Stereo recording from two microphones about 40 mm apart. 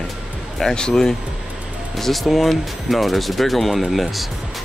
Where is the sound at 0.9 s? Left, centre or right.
Centre.